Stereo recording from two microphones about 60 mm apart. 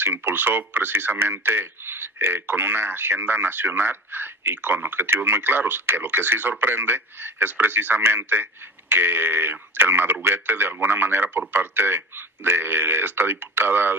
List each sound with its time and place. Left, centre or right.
0.0 s speech: right